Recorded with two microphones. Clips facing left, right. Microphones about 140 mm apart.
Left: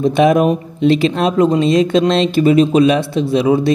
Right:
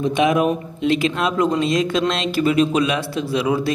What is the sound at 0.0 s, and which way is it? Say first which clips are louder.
Speech: left 5 dB; 40° left (ahead or behind).